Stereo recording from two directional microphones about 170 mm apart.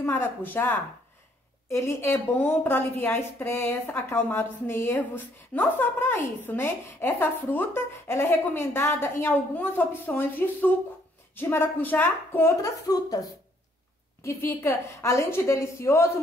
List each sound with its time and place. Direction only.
0.0 s a woman's voice: 15° left (ahead or behind)
14.2 s a woman's voice: 15° left (ahead or behind)